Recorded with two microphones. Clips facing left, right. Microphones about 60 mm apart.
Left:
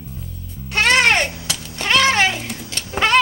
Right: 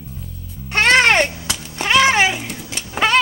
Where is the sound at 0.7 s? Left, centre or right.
Right.